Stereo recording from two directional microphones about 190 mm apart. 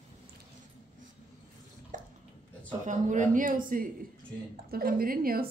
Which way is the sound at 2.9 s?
40° right (ahead or behind).